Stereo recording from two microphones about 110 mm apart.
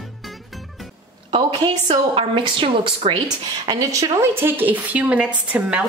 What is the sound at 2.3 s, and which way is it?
Speech, 50° right (ahead or behind).